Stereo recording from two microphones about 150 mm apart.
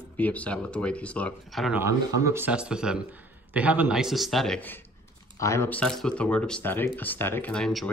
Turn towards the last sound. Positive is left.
turn(degrees=5)  # may be behind; listen again after turning